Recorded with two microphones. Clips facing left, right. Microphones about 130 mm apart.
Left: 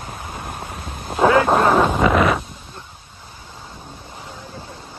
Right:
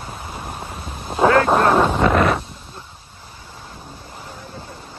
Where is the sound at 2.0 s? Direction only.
Centre (ahead or behind).